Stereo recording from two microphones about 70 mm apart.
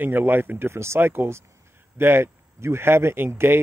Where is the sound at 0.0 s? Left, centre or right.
Right.